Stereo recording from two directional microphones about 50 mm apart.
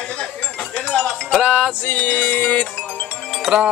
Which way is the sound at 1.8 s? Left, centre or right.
Left.